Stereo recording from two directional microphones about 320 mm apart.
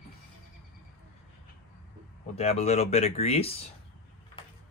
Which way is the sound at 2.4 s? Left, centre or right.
Centre.